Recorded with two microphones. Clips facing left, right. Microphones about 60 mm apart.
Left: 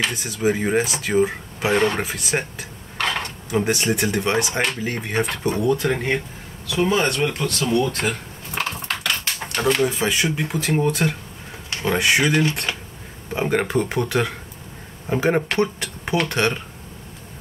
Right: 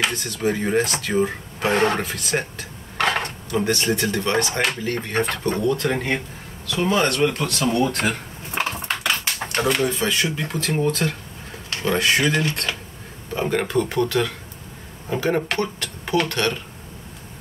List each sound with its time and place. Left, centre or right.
0.1 s speech: centre
7.4 s a sound: centre
9.6 s speech: centre
9.8 s speech: centre
13.4 s speech: left